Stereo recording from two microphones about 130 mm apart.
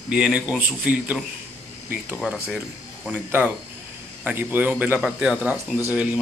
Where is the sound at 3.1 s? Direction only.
10° right (ahead or behind).